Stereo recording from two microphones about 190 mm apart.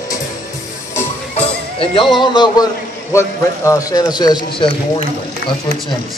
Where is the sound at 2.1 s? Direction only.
25° left (ahead or behind).